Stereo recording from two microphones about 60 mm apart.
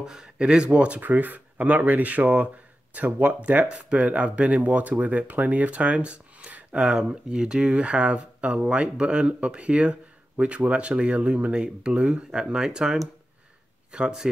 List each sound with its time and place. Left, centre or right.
0.0 s speech: centre